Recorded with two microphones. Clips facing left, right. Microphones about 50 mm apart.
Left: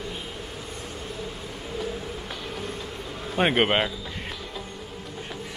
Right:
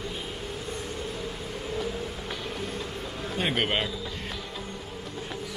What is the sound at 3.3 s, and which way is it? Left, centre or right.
Speech, left.